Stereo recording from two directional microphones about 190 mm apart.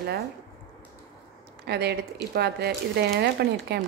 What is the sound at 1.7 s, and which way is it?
Speech, 60° right (ahead or behind).